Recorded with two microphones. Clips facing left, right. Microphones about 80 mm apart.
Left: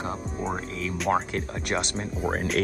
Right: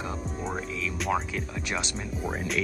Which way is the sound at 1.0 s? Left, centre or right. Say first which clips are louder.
Left 4 dB; left.